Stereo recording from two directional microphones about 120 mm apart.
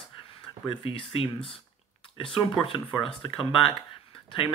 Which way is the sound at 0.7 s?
45° left (ahead or behind).